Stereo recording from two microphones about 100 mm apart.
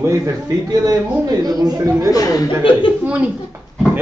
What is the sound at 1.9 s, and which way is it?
Speech, 30° right (ahead or behind).